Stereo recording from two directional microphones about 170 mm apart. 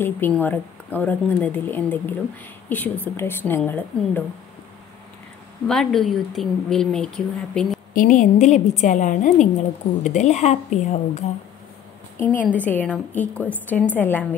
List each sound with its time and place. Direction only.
0.0 s a woman's voice: 10° left (ahead or behind)
5.7 s a woman's voice: centre (ahead or behind)
7.9 s a woman's voice: 50° left (ahead or behind)
12.2 s a woman's voice: 10° left (ahead or behind)